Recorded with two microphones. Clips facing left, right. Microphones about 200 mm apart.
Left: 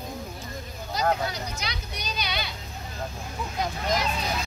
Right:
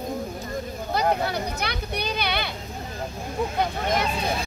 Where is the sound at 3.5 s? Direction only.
55° right (ahead or behind).